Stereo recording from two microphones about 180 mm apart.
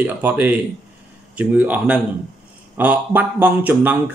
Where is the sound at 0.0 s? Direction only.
10° right (ahead or behind).